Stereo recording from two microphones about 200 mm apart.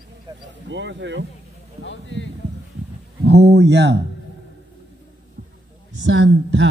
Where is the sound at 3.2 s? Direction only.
55° right (ahead or behind).